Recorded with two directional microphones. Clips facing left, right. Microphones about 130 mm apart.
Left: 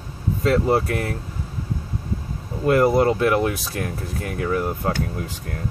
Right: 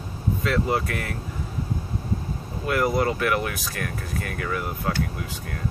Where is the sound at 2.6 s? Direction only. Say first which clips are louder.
Left 6 dB; 30° left (ahead or behind).